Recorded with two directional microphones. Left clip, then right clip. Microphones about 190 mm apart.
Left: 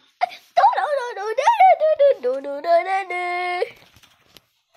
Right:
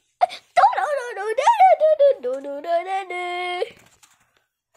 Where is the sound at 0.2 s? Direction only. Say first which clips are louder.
Right 3 dB; 25° right (ahead or behind).